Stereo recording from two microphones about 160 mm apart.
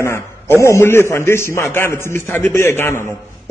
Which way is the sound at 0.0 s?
15° left (ahead or behind).